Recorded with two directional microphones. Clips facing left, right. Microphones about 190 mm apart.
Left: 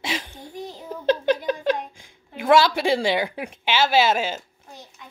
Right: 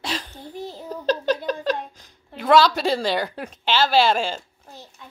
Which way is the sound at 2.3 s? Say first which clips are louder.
Right 1 dB; 10° left (ahead or behind).